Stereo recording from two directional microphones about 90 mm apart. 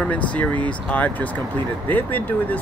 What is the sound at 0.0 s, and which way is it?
Speech, 15° left (ahead or behind).